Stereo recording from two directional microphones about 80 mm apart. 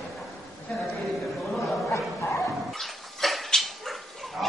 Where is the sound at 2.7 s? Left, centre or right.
Centre.